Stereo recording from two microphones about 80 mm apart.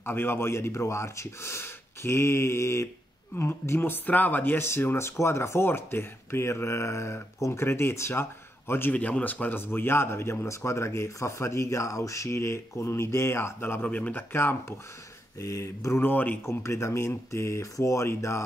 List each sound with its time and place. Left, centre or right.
0.0 s speech: left
15.4 s speech: left
16.6 s speech: left